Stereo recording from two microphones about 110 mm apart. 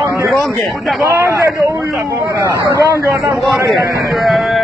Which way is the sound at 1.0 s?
25° right (ahead or behind).